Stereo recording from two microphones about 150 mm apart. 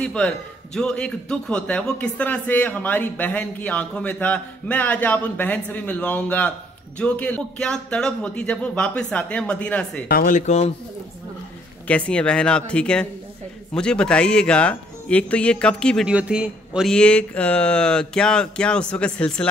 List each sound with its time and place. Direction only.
0.0 s a man's voice: 5° left (ahead or behind)
10.0 s speech: 70° left (ahead or behind); by 10.7 s 50° left (ahead or behind)
11.9 s speech: 5° left (ahead or behind)
16.1 s speech: 5° right (ahead or behind)